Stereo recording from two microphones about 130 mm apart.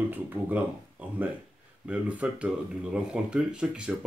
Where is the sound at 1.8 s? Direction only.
10° right (ahead or behind).